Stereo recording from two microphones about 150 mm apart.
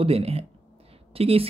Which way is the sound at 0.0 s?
40° right (ahead or behind).